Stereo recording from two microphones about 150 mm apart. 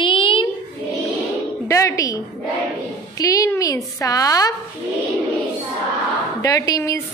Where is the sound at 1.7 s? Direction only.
20° left (ahead or behind).